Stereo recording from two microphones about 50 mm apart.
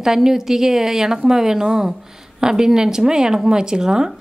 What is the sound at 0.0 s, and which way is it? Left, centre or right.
A woman's voice, centre.